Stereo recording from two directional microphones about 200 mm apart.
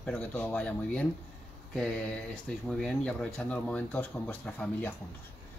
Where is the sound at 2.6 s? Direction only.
Centre (ahead or behind).